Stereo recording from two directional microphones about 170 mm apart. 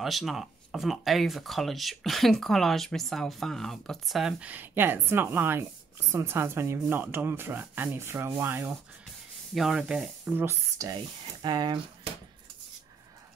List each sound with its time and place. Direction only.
0.0 s speech: centre (ahead or behind)
9.5 s speech: centre (ahead or behind); by 11.0 s 15° right (ahead or behind)
11.4 s speech: 25° right (ahead or behind)